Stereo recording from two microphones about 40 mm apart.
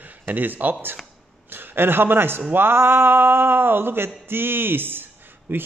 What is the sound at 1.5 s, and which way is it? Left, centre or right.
A man's voice, right.